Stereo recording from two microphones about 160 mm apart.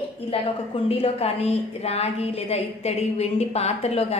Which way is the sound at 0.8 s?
40° left (ahead or behind).